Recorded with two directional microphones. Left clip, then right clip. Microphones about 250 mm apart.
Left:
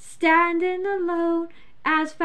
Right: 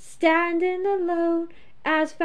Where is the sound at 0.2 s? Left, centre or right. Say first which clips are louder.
Left 2 dB; centre.